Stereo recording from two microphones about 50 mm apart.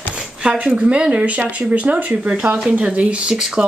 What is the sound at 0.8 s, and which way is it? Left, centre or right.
Speech, right.